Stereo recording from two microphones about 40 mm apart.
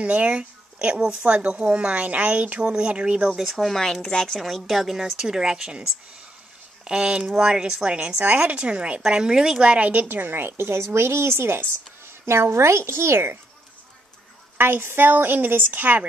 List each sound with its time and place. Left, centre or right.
0.0 s speech: right
2.0 s speech: right
3.3 s speech: centre
3.6 s speech: centre
4.4 s speech: centre; by 8.3 s right
8.3 s speech: right
8.5 s speech: right
9.0 s speech: centre
10.0 s a woman's voice: right
14.6 s a woman's voice: right